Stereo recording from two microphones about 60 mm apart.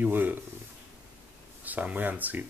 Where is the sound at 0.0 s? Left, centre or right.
Right.